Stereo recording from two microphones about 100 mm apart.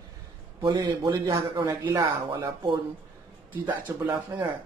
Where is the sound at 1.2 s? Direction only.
35° right (ahead or behind).